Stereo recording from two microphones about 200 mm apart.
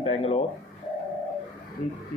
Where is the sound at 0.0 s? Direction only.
30° left (ahead or behind).